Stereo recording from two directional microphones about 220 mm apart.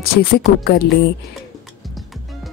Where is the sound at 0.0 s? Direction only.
45° left (ahead or behind).